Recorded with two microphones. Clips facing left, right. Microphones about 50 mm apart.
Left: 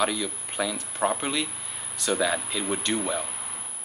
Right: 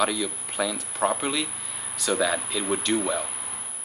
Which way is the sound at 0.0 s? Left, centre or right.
Centre.